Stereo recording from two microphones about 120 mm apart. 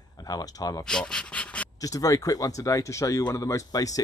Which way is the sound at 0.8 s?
5° left (ahead or behind).